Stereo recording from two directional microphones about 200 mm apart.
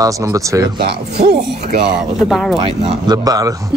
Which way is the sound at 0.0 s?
15° right (ahead or behind).